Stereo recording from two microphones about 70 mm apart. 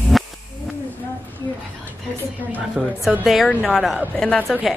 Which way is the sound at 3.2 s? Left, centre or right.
Centre.